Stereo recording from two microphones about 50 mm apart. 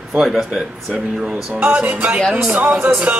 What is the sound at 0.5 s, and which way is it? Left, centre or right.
Speech, centre.